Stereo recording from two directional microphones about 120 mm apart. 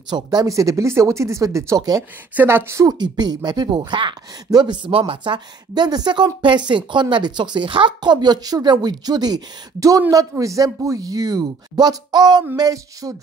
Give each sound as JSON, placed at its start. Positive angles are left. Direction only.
{"t": 0.1, "sound": "speech", "side_deg": -35}
{"t": 3.0, "sound": "speech", "side_deg": -35}